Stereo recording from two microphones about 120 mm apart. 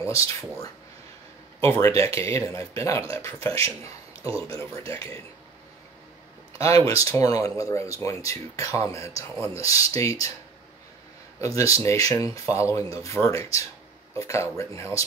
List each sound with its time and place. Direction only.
0.0 s speech: 25° left (ahead or behind)
1.7 s speech: 25° left (ahead or behind)
4.6 s speech: 20° left (ahead or behind)
6.7 s speech: 55° right (ahead or behind)
7.1 s speech: 30° left (ahead or behind)
11.4 s speech: 25° left (ahead or behind)